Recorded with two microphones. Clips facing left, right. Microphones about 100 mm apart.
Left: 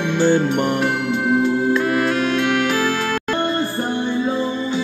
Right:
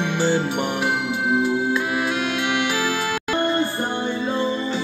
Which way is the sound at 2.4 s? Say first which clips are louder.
Left 4 dB; 40° left (ahead or behind).